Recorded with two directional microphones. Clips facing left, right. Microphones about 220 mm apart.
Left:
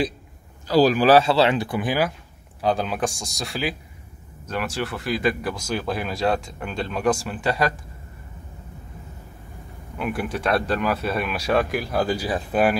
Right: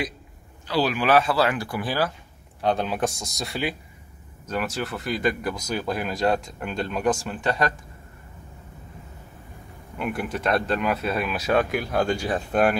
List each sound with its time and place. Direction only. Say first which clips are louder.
0.7 s speech: left 6 dB; 40° left (ahead or behind); by 2.1 s 15° left (ahead or behind)
2.6 s speech: left 1 dB; centre (ahead or behind)
9.9 s speech: left 1 dB; centre (ahead or behind)